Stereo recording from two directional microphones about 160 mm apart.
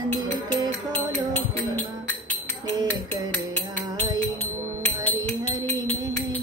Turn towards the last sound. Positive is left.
turn(degrees=10)  # may be behind; listen again after turning